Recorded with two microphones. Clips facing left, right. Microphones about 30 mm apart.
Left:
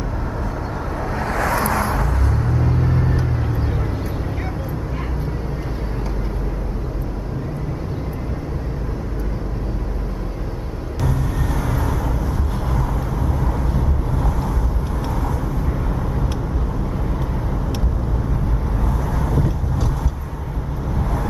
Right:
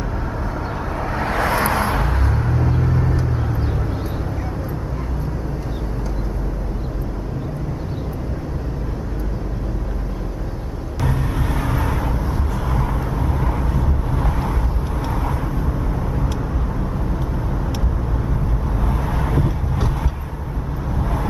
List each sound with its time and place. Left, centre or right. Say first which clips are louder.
1.3 s vehicle: right 1 dB; right
2.3 s vehicle: even; centre
2.8 s vehicle: even; centre
11.1 s vehicle: right 1 dB; right
18.9 s vehicle: right 1 dB; right